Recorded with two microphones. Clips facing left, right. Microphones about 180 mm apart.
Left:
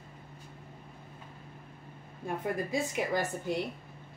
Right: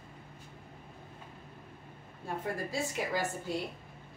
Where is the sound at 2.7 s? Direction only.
20° left (ahead or behind).